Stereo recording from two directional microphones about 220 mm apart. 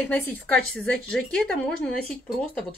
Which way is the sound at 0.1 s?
5° left (ahead or behind).